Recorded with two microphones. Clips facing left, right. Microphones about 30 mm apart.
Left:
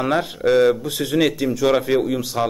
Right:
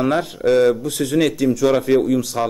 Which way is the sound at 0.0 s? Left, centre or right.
Centre.